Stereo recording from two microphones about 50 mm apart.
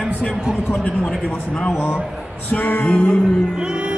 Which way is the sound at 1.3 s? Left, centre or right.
Centre.